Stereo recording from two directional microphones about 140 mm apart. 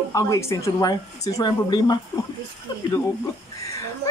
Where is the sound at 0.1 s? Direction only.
20° left (ahead or behind).